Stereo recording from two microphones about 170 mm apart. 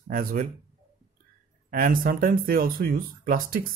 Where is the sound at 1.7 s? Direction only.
55° right (ahead or behind).